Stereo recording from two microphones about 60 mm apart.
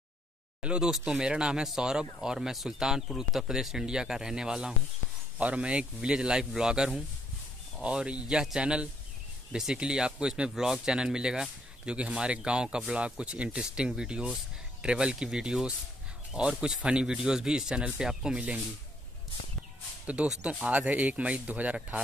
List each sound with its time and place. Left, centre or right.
0.6 s speech: centre
20.6 s speech: right